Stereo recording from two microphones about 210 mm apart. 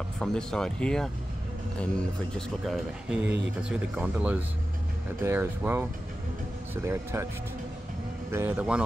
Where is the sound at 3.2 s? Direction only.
55° right (ahead or behind).